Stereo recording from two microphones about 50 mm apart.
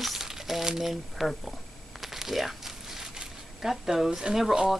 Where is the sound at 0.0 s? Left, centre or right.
Centre.